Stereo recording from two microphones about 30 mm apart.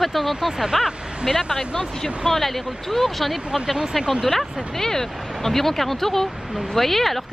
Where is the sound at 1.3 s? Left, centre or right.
Centre.